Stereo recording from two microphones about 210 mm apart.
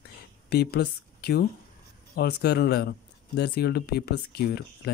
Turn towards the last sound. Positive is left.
turn(degrees=50)  # may be behind; listen again after turning